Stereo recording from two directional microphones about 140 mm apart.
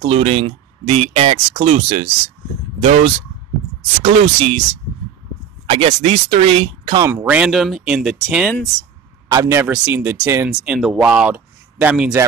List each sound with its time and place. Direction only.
0.0 s speech: 45° right (ahead or behind)
4.0 s speech: 45° right (ahead or behind)
5.7 s speech: 45° right (ahead or behind)
7.0 s speech: 20° right (ahead or behind)
9.3 s speech: 20° right (ahead or behind)
9.7 s speech: 10° right (ahead or behind)